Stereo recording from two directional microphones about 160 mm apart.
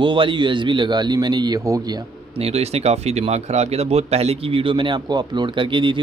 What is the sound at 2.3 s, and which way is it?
Speech, 40° right (ahead or behind).